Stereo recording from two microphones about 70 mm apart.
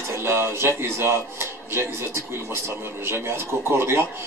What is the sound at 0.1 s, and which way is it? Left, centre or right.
A man's voice, right.